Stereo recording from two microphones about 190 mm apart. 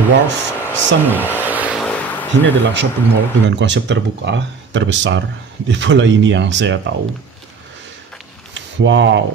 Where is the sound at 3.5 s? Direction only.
70° right (ahead or behind).